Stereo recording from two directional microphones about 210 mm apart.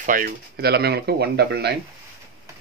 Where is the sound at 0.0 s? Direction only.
40° right (ahead or behind).